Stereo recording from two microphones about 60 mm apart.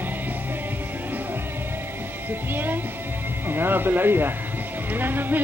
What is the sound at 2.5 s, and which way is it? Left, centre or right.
Music, right.